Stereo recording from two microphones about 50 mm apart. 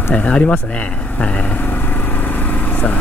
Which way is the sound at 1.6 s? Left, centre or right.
Left.